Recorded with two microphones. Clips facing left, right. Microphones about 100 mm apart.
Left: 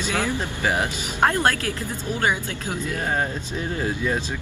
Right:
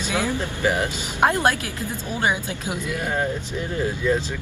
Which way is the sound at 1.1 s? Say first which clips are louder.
Right 1 dB; 15° right (ahead or behind).